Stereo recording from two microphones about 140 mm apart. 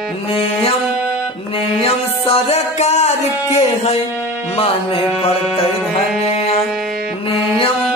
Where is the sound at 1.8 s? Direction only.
45° left (ahead or behind).